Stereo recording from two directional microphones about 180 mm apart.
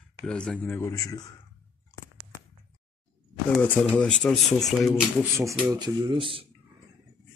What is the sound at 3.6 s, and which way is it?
Speech, 5° left (ahead or behind).